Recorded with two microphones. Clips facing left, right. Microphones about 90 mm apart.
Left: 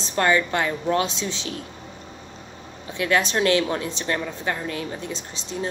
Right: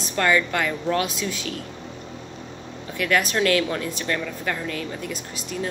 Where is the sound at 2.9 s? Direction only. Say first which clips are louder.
Left 1 dB; 25° left (ahead or behind).